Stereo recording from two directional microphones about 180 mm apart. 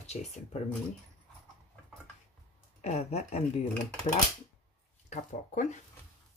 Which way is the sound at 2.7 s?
35° left (ahead or behind).